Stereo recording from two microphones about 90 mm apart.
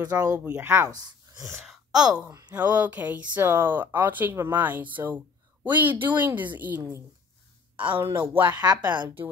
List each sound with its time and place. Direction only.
0.0 s speech: 45° right (ahead or behind)
0.4 s speech: 20° right (ahead or behind)
1.7 s sigh: 5° right (ahead or behind)
2.8 s speech: 20° right (ahead or behind)
6.8 s speech: 35° right (ahead or behind)
7.7 s a sound: 70° right (ahead or behind)
8.0 s speech: 20° right (ahead or behind)
8.5 s speech: 50° right (ahead or behind)